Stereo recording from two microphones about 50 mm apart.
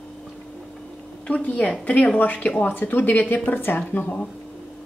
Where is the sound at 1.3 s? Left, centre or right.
Left.